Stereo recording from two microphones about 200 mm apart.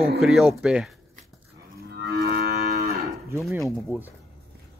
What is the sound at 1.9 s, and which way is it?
Livestock, 50° right (ahead or behind).